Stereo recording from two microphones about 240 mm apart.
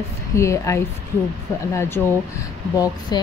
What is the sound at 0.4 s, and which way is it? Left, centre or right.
Speech, centre.